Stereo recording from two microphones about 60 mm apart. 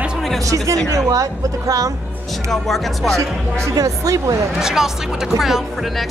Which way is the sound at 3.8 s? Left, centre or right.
Right.